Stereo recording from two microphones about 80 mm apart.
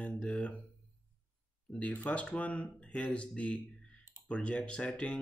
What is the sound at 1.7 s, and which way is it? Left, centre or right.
Speech, centre.